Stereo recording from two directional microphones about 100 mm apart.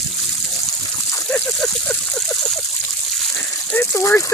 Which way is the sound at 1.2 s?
15° left (ahead or behind).